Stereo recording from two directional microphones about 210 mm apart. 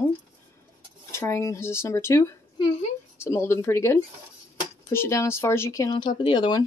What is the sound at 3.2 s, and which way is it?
Speech, 10° left (ahead or behind).